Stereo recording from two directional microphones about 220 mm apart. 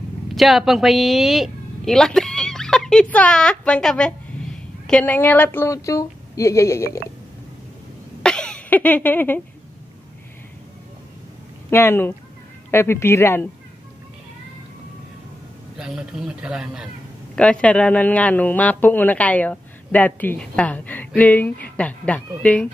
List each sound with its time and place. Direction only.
0.3 s speech: centre (ahead or behind)
8.2 s cough: 5° left (ahead or behind)
11.7 s speech: 10° left (ahead or behind)
15.8 s speech: 5° right (ahead or behind)